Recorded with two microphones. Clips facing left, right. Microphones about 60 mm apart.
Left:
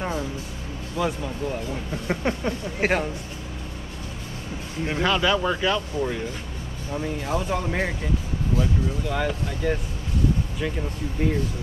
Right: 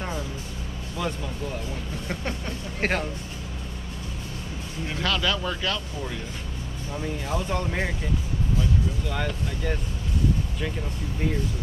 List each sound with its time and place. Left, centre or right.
0.9 s speech: centre
2.0 s speech: left
2.8 s speech: centre
4.8 s speech: left
9.0 s speech: centre
11.2 s speech: centre